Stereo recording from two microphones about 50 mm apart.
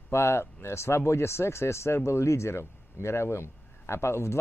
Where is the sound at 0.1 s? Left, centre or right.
Left.